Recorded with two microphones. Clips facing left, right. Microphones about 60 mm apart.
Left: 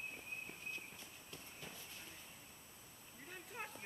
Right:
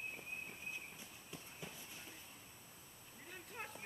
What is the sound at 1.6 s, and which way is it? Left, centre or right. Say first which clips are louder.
Clip-clop: right 2 dB; centre.